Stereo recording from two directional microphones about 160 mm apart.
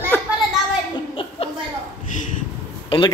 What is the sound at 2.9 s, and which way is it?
Speech, 30° left (ahead or behind).